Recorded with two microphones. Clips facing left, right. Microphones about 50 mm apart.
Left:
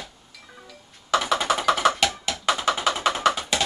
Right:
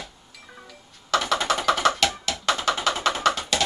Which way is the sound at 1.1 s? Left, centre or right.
Centre.